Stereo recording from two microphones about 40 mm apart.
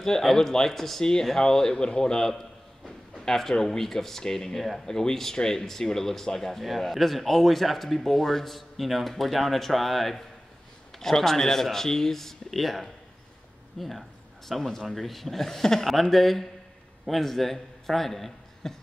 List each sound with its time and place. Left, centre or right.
0.0 s a man's voice: centre